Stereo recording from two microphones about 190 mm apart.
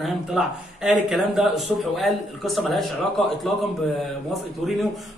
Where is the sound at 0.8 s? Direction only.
Centre (ahead or behind).